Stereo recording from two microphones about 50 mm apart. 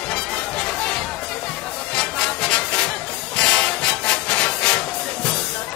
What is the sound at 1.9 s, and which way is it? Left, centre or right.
Music, left.